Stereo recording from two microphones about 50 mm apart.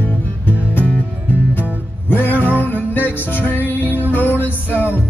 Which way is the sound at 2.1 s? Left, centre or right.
Left.